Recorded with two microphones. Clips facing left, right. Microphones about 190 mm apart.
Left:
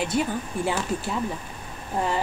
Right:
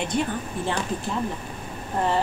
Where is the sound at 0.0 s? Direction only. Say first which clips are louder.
Left 1 dB; 5° left (ahead or behind).